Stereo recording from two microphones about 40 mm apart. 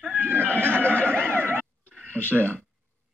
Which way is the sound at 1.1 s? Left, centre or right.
Right.